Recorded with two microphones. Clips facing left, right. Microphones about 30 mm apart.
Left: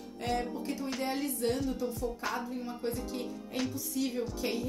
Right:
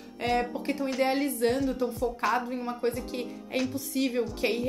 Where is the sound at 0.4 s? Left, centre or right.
Right.